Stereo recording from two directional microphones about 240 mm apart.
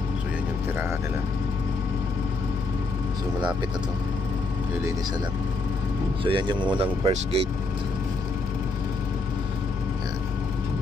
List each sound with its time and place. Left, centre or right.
6.2 s speech: centre